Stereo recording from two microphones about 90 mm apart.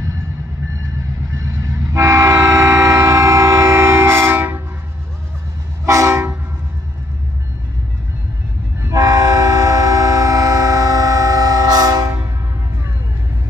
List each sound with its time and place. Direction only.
1.4 s train: 35° right (ahead or behind)
5.9 s vehicle: 35° right (ahead or behind)
8.8 s train: 35° right (ahead or behind)